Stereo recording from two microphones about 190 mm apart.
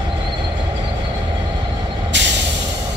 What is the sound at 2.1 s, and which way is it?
Vehicle, 70° right (ahead or behind).